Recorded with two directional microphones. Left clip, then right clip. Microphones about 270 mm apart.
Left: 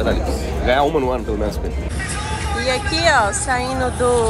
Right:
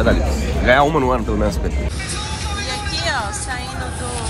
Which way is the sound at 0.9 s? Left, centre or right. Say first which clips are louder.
Right 2 dB; right.